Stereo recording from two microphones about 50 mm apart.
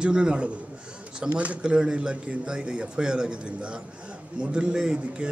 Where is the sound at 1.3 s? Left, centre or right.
Right.